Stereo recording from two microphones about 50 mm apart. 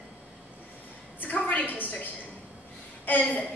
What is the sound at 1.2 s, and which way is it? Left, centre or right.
Speech, left.